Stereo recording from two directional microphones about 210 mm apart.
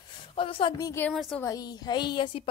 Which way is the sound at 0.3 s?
25° left (ahead or behind).